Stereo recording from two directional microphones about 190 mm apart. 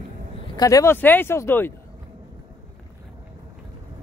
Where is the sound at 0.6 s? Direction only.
20° left (ahead or behind).